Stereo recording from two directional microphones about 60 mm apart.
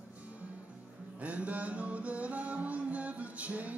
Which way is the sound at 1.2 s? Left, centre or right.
Right.